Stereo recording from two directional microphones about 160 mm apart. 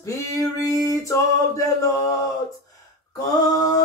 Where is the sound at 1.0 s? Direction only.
20° left (ahead or behind).